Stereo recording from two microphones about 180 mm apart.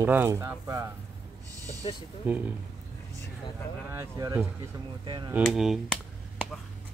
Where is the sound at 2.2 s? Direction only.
10° right (ahead or behind).